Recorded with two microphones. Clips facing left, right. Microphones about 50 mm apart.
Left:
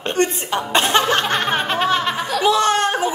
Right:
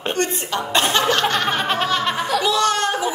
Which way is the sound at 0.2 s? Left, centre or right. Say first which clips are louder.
Left 6 dB; left.